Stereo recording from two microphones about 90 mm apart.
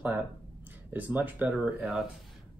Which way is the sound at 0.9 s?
20° right (ahead or behind).